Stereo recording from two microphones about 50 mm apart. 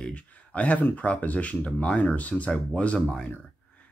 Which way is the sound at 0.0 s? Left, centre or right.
Left.